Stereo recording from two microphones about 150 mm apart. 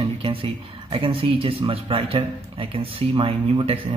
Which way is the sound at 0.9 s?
40° right (ahead or behind).